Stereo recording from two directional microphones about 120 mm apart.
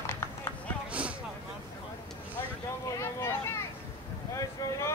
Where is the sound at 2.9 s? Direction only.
25° left (ahead or behind).